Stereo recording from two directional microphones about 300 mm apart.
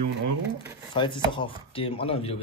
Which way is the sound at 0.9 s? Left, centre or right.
Centre.